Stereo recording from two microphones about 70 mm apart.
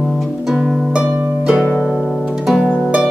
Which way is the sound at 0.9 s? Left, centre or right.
Centre.